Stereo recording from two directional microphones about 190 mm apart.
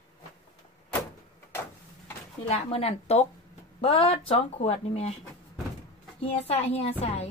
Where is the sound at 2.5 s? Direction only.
30° left (ahead or behind).